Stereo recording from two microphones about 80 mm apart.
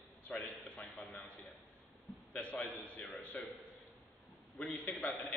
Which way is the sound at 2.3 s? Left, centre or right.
Centre.